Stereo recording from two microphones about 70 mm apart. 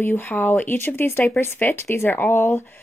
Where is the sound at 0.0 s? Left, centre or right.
Left.